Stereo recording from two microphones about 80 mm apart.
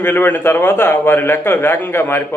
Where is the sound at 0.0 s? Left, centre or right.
Left.